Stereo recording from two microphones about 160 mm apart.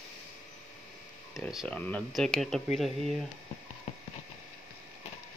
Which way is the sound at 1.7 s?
10° left (ahead or behind).